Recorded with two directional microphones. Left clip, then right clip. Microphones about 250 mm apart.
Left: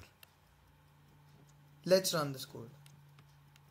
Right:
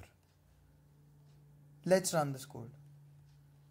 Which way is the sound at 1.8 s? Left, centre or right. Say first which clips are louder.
Even; right.